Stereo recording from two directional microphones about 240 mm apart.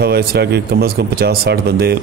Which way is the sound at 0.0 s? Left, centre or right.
Right.